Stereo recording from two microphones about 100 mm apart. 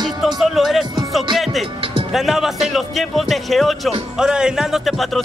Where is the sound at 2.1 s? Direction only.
5° right (ahead or behind).